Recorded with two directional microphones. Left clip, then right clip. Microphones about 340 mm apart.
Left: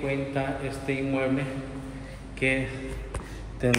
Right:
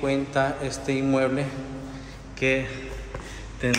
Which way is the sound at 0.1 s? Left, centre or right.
Centre.